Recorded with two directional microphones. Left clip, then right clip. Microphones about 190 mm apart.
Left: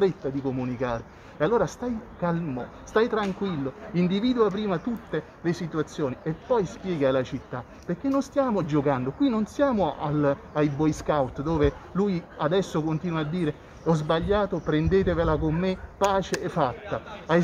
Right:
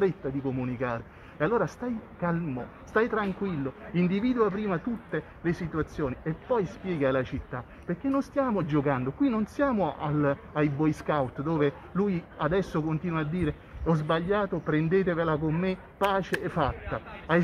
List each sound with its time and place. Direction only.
0.0 s speech: 5° left (ahead or behind)